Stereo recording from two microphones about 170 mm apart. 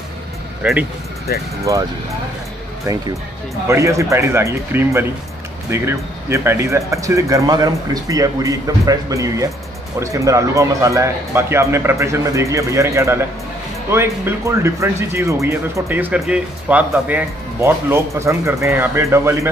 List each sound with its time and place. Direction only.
0.6 s speech: 10° right (ahead or behind)
1.6 s speech: 20° right (ahead or behind)
3.6 s speech: 15° right (ahead or behind)